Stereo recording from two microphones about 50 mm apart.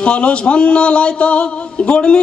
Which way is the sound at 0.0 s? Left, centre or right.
Left.